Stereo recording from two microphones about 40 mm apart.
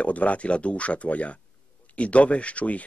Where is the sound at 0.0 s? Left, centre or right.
Left.